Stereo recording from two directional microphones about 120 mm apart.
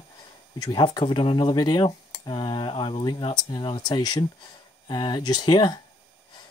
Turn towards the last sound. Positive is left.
turn(degrees=35)  # may be behind; listen again after turning